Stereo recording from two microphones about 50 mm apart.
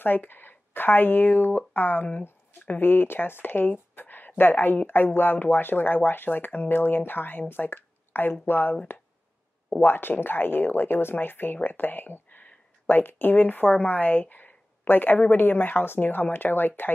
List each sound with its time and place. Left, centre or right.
0.0 s speech: left
9.8 s speech: left